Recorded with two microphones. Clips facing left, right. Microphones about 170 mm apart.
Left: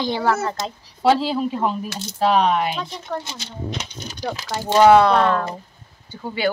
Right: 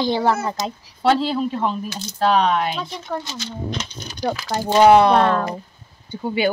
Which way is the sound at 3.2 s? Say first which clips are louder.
Right 2 dB; 20° left (ahead or behind).